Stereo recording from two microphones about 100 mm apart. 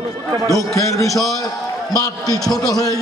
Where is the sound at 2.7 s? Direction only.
35° left (ahead or behind).